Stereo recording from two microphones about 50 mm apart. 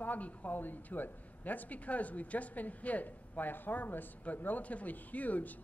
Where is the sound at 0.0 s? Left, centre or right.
Left.